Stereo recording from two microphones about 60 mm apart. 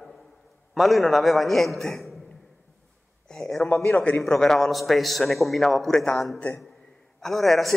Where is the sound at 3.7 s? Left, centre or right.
Left.